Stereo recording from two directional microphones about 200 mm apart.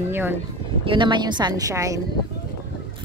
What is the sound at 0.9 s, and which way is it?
Speech, 25° right (ahead or behind).